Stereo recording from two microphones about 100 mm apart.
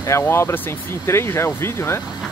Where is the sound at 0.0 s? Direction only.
25° left (ahead or behind).